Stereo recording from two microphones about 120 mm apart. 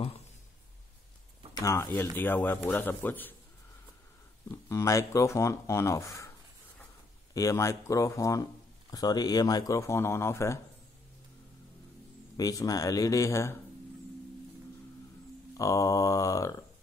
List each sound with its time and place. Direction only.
1.5 s speech: 25° left (ahead or behind)
4.5 s speech: 25° left (ahead or behind)
7.3 s speech: 25° left (ahead or behind)
12.4 s speech: 30° left (ahead or behind)
15.5 s speech: 30° left (ahead or behind)